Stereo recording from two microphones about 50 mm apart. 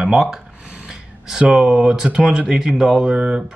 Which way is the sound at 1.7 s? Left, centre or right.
Centre.